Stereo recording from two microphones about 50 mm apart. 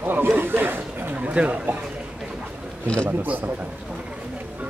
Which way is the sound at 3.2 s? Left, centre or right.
Right.